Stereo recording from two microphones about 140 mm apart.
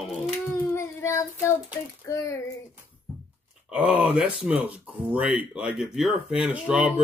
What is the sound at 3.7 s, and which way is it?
Speech, 10° right (ahead or behind).